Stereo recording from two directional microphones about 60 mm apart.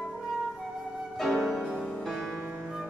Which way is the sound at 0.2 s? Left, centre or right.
Centre.